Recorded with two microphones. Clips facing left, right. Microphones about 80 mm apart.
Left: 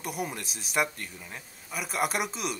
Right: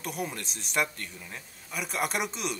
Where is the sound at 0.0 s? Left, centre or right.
Centre.